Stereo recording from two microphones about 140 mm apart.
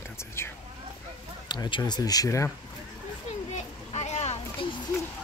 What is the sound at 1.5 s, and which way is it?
Speech, 30° left (ahead or behind).